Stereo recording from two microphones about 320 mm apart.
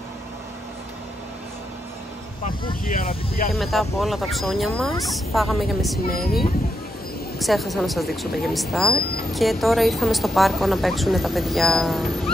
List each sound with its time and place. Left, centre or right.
2.4 s speech: left
3.5 s a woman's voice: centre
7.3 s a woman's voice: centre